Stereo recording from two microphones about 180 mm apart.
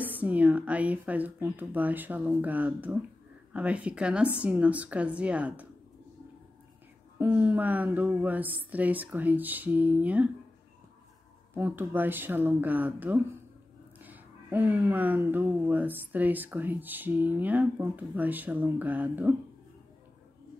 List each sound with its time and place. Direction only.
0.0 s speech: 10° right (ahead or behind)
7.2 s speech: 10° right (ahead or behind)
11.5 s speech: 10° right (ahead or behind)